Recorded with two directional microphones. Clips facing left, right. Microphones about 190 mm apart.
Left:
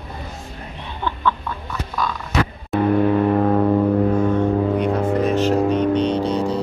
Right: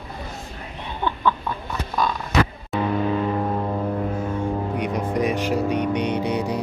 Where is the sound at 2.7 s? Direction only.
55° left (ahead or behind).